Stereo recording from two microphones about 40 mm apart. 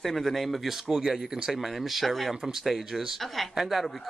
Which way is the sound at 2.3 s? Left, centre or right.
Centre.